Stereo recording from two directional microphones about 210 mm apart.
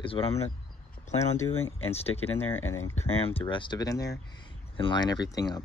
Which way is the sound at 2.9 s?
25° left (ahead or behind).